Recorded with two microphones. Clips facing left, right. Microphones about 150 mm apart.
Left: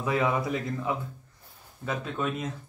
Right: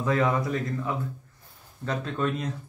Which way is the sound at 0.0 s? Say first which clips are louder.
Right 2 dB; 10° left (ahead or behind).